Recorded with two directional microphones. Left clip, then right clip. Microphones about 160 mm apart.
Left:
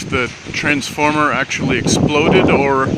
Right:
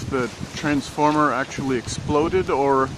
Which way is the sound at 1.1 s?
25° left (ahead or behind).